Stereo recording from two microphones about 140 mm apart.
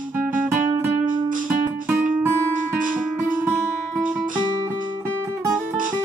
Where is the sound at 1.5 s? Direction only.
10° right (ahead or behind).